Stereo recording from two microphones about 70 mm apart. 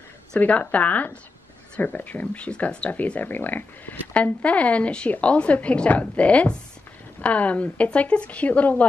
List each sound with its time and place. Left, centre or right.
0.4 s speech: left